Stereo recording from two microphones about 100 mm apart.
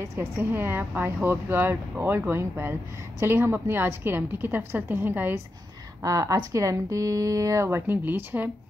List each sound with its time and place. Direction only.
0.0 s speech: 30° right (ahead or behind)
6.0 s speech: 35° right (ahead or behind); by 8.5 s 20° right (ahead or behind)